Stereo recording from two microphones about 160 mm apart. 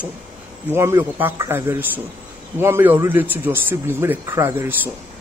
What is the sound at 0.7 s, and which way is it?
A man's voice, 15° right (ahead or behind).